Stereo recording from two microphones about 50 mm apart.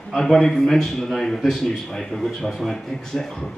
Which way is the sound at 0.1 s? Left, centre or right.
Centre.